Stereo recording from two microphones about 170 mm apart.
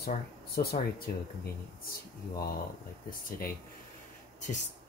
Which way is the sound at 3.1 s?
55° left (ahead or behind).